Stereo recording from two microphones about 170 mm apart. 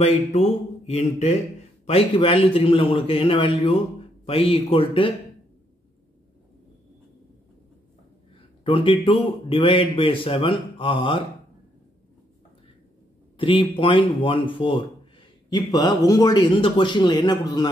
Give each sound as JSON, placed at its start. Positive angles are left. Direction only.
{"t": 0.0, "sound": "a man's voice", "side_deg": 40}
{"t": 8.4, "sound": "a sound", "side_deg": 30}
{"t": 9.0, "sound": "a man's voice", "side_deg": 30}
{"t": 13.4, "sound": "speech", "side_deg": 30}